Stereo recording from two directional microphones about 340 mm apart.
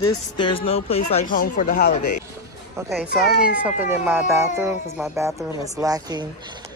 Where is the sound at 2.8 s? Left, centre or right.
Centre.